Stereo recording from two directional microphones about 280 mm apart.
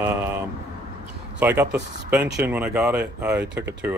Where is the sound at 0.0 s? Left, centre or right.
Centre.